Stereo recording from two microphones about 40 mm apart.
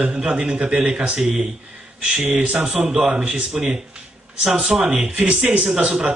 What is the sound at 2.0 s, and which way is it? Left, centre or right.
A man's voice, right.